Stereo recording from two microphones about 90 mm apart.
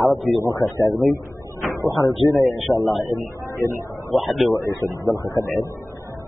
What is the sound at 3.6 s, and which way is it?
Speech, 35° left (ahead or behind).